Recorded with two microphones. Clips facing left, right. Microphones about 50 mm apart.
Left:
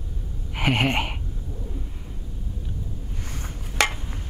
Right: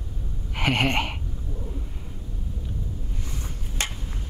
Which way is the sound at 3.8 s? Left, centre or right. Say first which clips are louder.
Left 9 dB; left.